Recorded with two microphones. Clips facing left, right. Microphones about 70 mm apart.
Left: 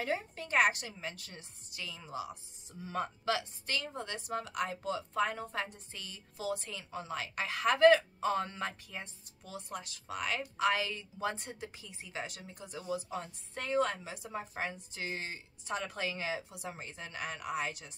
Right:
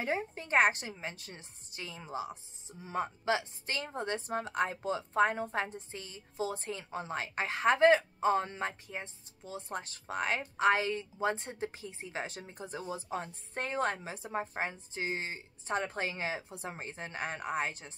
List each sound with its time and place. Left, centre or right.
0.0 s a woman's voice: right